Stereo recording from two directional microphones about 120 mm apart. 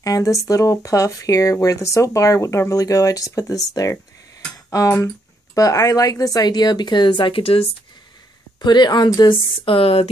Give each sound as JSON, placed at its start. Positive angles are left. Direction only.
{"t": 0.0, "sound": "speech", "side_deg": 30}
{"t": 8.5, "sound": "speech", "side_deg": 40}